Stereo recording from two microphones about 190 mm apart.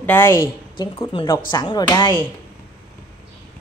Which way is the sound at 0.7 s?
25° left (ahead or behind).